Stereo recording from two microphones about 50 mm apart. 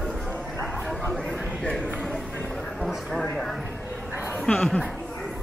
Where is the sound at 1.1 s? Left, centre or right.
Centre.